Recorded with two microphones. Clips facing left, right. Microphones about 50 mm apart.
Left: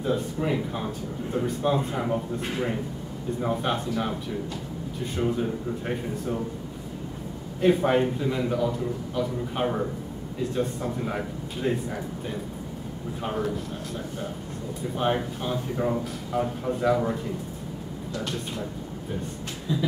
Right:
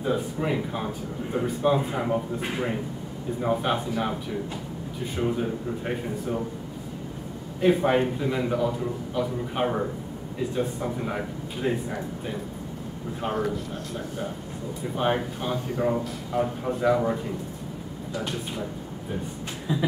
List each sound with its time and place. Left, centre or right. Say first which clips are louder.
0.0 s a man's voice: even; centre
7.6 s a man's voice: even; centre
15.0 s a man's voice: right 1 dB; centre
19.7 s speech: right 1 dB; right